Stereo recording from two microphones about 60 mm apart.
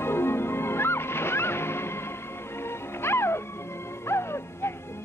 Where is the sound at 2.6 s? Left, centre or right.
Left.